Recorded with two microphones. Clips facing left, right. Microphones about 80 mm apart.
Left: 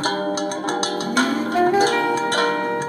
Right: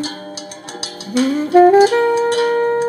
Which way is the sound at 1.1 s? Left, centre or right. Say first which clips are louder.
Right 5 dB; left.